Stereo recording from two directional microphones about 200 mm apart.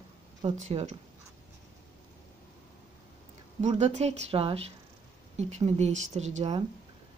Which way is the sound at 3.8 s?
35° right (ahead or behind).